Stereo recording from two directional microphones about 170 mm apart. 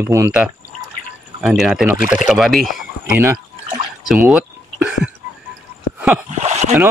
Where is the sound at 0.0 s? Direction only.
15° right (ahead or behind).